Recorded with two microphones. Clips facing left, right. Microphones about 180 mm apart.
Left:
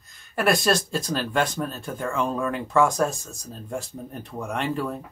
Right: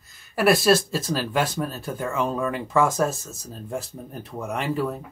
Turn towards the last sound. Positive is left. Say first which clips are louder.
# right 1 dB
turn(degrees=-5)  # may be behind; listen again after turning